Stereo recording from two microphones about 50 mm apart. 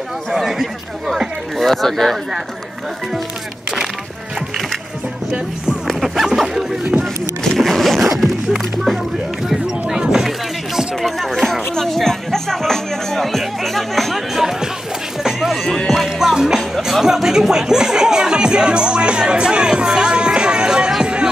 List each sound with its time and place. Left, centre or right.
0.3 s speech: centre
1.6 s speech: centre
5.9 s a sound: centre
6.8 s speech: right
7.5 s speech: centre
9.5 s music: centre
11.7 s speech: centre
15.2 s run: centre
16.1 s music: centre
16.7 s speech: centre